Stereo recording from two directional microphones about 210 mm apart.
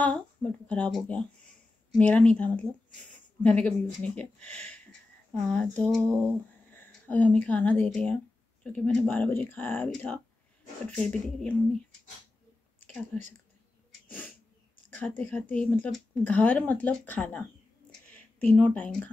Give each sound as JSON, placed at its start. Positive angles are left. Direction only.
{"t": 0.0, "sound": "speech", "side_deg": 5}
{"t": 5.5, "sound": "a sound", "side_deg": 5}
{"t": 8.6, "sound": "speech", "side_deg": 5}
{"t": 12.8, "sound": "speech", "side_deg": 5}
{"t": 14.1, "sound": "a sound", "side_deg": 10}
{"t": 15.0, "sound": "speech", "side_deg": 5}
{"t": 18.5, "sound": "speech", "side_deg": 5}